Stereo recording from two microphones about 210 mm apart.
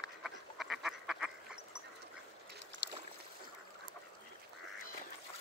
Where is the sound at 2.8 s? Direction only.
55° right (ahead or behind).